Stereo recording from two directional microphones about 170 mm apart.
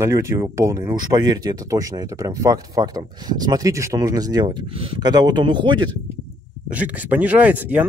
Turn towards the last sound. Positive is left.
turn(degrees=-10)  # may be behind; listen again after turning